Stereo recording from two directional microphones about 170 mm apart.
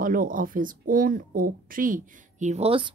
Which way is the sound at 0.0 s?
55° right (ahead or behind).